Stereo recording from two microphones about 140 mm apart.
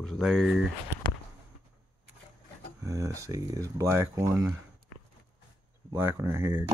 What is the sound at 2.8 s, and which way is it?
Speech, 25° right (ahead or behind).